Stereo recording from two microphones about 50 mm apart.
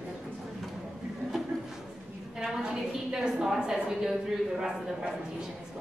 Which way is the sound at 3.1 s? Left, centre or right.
Centre.